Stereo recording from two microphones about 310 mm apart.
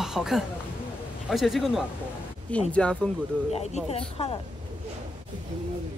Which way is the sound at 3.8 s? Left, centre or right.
Centre.